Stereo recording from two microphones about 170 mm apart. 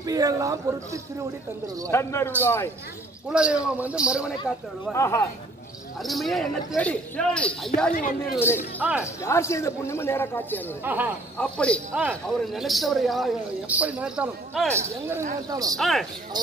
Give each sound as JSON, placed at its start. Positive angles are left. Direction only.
{"t": 0.0, "sound": "speech", "side_deg": -20}
{"t": 1.9, "sound": "speech", "side_deg": 15}
{"t": 3.3, "sound": "speech", "side_deg": -5}
{"t": 4.9, "sound": "speech", "side_deg": 15}
{"t": 6.0, "sound": "speech", "side_deg": 0}
{"t": 10.8, "sound": "speech", "side_deg": -10}
{"t": 11.3, "sound": "speech", "side_deg": 5}
{"t": 11.9, "sound": "speech", "side_deg": -10}
{"t": 14.8, "sound": "speech", "side_deg": -15}
{"t": 15.8, "sound": "speech", "side_deg": 0}